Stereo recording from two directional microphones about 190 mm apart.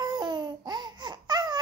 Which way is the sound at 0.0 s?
20° right (ahead or behind).